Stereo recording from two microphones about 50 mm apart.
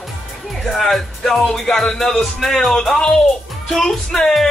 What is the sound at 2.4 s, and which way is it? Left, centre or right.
Speech, centre.